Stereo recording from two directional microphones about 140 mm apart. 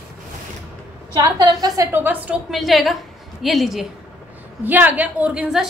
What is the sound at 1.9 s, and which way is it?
Speech, 15° right (ahead or behind).